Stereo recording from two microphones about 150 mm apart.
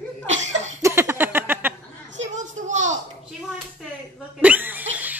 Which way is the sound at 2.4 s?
55° right (ahead or behind).